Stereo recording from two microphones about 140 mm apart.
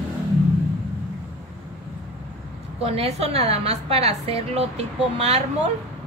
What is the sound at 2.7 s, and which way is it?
Speech, 45° right (ahead or behind).